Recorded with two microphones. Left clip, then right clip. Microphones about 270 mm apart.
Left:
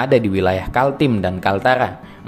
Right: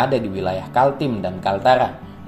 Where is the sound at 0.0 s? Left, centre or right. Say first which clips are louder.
Left 4 dB; left.